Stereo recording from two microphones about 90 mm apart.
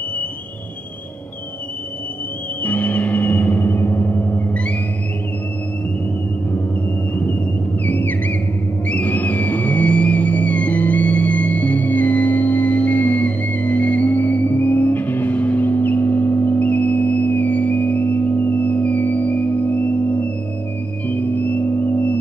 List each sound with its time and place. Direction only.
2.6 s gong: 20° left (ahead or behind)
7.8 s music: 20° left (ahead or behind)